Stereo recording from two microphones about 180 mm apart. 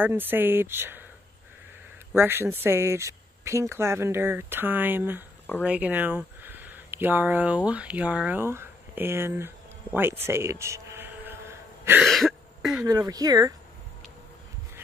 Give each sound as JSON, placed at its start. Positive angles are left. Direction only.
{"t": 0.0, "sound": "speech", "side_deg": -10}
{"t": 2.1, "sound": "speech", "side_deg": -15}
{"t": 10.2, "sound": "gasp", "side_deg": -15}
{"t": 12.0, "sound": "cough", "side_deg": 0}
{"t": 12.8, "sound": "speech", "side_deg": -20}